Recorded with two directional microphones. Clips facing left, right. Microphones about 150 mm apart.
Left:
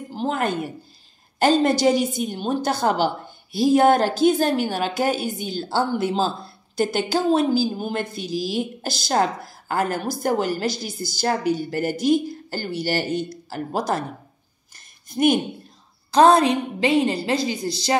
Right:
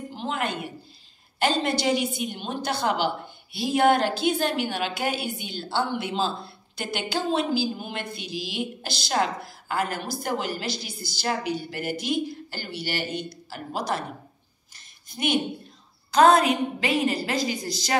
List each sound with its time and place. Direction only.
0.1 s a woman's voice: 40° left (ahead or behind)
15.0 s a woman's voice: 45° left (ahead or behind)
16.1 s a woman's voice: 30° left (ahead or behind)